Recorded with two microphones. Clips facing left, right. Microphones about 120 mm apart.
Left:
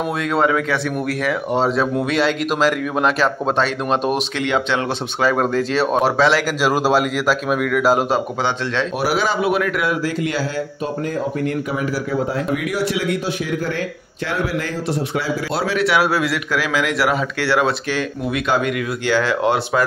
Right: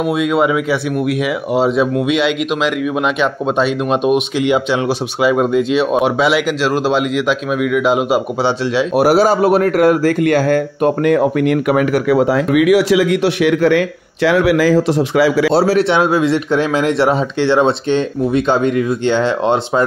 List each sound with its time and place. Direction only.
0.0 s speech: 10° right (ahead or behind)
6.6 s speech: 10° left (ahead or behind)
8.9 s a man's voice: 45° right (ahead or behind); by 15.5 s 90° right
15.5 s a man's voice: 35° right (ahead or behind)
15.9 s speech: 20° right (ahead or behind)